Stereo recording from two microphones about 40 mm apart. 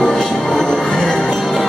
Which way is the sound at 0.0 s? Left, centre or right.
Centre.